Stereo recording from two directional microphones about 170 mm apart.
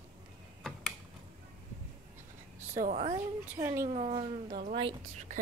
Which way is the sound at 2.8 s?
45° right (ahead or behind).